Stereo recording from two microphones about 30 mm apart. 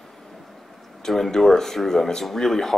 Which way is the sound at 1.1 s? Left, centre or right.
Centre.